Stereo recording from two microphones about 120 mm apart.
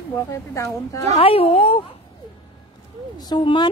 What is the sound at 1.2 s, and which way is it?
Speech, 55° left (ahead or behind).